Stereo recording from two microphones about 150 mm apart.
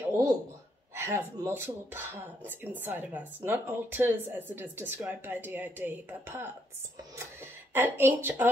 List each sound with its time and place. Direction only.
0.9 s a woman's voice: 15° right (ahead or behind)
7.7 s a woman's voice: 15° right (ahead or behind)